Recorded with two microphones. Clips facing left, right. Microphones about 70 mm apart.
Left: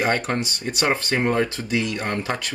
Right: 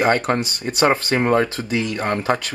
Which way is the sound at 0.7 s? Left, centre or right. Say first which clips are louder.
Right 5 dB; right.